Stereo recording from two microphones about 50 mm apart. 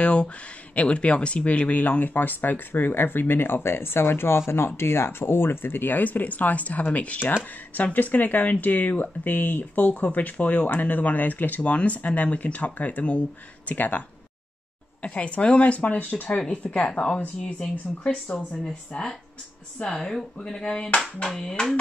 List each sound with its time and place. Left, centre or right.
0.0 s speech: left
16.3 s speech: left